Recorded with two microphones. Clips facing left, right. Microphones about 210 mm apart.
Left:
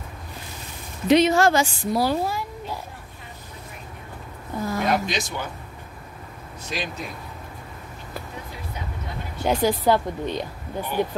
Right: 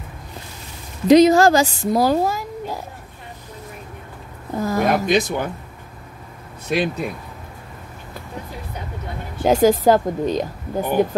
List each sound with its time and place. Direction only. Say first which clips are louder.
1.0 s a woman's voice: right 6 dB; 40° right (ahead or behind)
4.6 s speech: right 5 dB; 50° right (ahead or behind)
6.7 s speech: right 10 dB; 55° right (ahead or behind)
9.5 s speech: right 6 dB; 45° right (ahead or behind)